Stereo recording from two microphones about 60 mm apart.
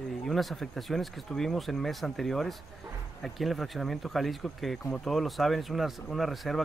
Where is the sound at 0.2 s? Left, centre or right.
Centre.